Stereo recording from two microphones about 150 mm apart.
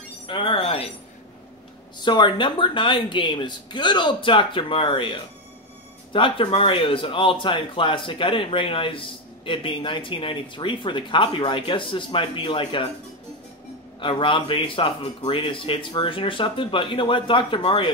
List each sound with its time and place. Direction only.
0.3 s speech: 35° left (ahead or behind)
2.0 s speech: 30° left (ahead or behind)
14.0 s speech: 35° left (ahead or behind)